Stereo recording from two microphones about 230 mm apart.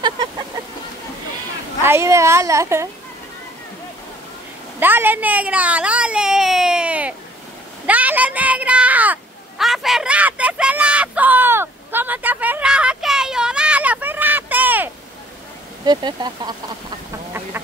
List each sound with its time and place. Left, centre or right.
0.0 s vehicle: centre
1.8 s a woman's voice: centre
4.7 s speech: centre
7.8 s a sound: centre
15.8 s speech: centre